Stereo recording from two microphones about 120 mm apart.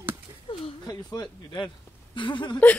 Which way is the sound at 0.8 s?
35° left (ahead or behind).